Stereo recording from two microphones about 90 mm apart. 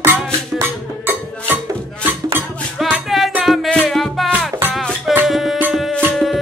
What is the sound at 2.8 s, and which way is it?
Music, centre (ahead or behind).